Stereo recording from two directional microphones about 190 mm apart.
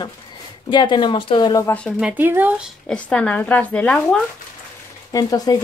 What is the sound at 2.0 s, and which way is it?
Speech, 10° right (ahead or behind).